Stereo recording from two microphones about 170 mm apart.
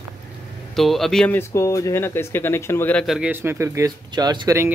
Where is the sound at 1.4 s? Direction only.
15° left (ahead or behind).